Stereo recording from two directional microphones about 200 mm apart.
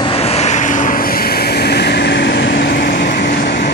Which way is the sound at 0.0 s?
30° left (ahead or behind).